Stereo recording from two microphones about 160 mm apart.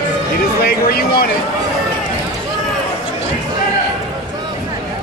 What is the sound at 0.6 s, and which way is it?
Speech, 70° left (ahead or behind).